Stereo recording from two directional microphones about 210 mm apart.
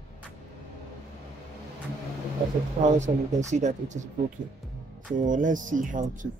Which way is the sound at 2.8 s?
35° right (ahead or behind).